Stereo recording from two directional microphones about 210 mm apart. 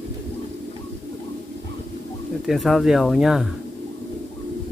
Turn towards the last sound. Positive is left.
turn(degrees=0)  # may be behind; listen again after turning